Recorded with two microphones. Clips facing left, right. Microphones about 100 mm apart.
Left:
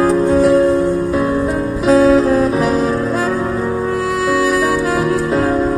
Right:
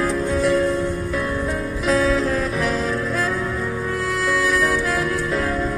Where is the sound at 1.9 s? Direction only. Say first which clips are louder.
Left 9 dB; 35° left (ahead or behind).